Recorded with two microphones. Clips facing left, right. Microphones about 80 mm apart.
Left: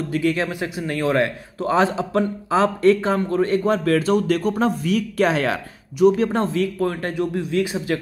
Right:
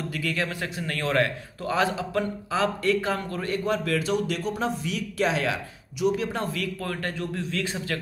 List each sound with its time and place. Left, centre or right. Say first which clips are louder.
0.1 s speech: left 10 dB; left
1.6 s a man's voice: left 6 dB; left
6.4 s speech: left 9 dB; left